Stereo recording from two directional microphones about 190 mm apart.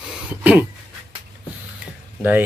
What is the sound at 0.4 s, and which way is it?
Speech, 5° right (ahead or behind).